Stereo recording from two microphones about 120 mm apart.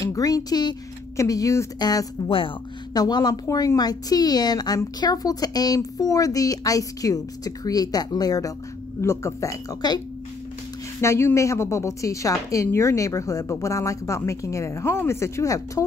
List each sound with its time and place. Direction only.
0.0 s speech: 30° left (ahead or behind)
2.2 s speech: 50° left (ahead or behind)
2.9 s a woman's voice: 35° left (ahead or behind)
11.0 s a woman's voice: 20° left (ahead or behind)